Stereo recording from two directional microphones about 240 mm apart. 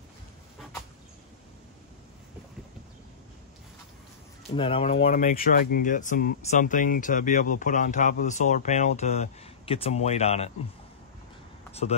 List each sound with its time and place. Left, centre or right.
4.6 s speech: left
5.0 s speech: left